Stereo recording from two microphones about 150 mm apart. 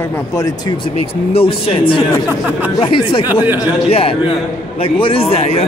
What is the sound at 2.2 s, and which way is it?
Speech, 10° right (ahead or behind).